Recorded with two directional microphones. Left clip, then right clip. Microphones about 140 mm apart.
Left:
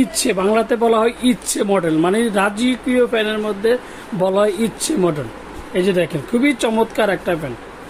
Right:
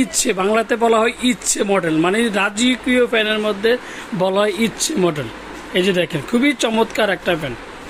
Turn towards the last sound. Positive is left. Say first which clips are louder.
# even
turn(degrees=5)  # may be behind; listen again after turning